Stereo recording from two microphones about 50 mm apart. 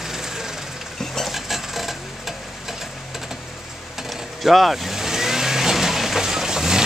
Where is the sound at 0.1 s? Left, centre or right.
Centre.